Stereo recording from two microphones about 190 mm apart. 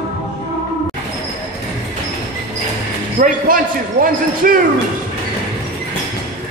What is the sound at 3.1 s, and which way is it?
Speech, 45° right (ahead or behind).